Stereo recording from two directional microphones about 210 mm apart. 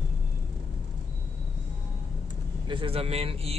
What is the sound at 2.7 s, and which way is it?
Speech, 25° right (ahead or behind).